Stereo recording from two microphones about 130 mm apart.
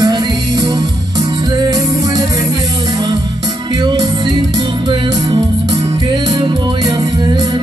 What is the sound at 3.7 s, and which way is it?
Music, 35° right (ahead or behind).